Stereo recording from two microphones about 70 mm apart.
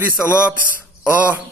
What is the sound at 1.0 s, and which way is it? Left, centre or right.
Speech, right.